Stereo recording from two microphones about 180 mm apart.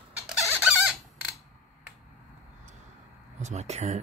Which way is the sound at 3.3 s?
40° right (ahead or behind).